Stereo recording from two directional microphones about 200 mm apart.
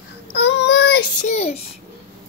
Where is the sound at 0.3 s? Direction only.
60° left (ahead or behind).